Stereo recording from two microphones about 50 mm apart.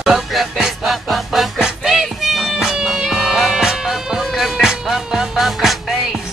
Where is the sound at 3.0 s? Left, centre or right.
Centre.